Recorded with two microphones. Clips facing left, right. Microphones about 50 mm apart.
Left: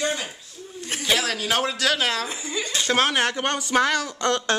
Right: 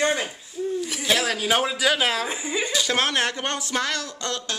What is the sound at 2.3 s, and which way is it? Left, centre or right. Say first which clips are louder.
Speech: right 3 dB; centre.